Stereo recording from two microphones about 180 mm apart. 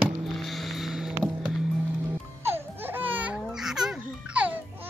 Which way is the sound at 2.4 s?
10° right (ahead or behind).